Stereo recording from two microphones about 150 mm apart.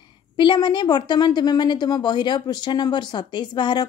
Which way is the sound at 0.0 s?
30° left (ahead or behind).